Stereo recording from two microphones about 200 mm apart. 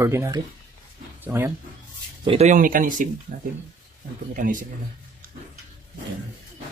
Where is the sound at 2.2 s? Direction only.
35° right (ahead or behind).